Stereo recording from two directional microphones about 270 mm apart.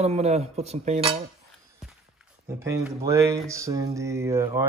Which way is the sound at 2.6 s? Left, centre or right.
Centre.